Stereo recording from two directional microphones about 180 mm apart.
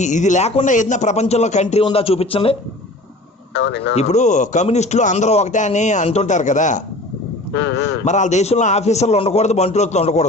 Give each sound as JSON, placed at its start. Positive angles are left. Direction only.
{"t": 0.0, "sound": "a man's voice", "side_deg": 40}
{"t": 3.5, "sound": "speech", "side_deg": 85}
{"t": 3.9, "sound": "a man's voice", "side_deg": 40}
{"t": 7.5, "sound": "speech", "side_deg": 75}
{"t": 8.0, "sound": "a man's voice", "side_deg": 40}